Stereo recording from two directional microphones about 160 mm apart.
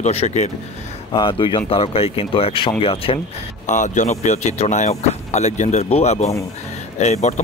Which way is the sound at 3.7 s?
50° left (ahead or behind).